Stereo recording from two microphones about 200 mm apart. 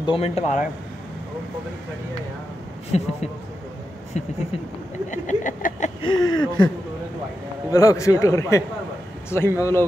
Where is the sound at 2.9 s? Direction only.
30° left (ahead or behind).